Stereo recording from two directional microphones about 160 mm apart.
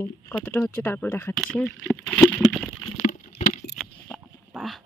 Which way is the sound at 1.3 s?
5° left (ahead or behind).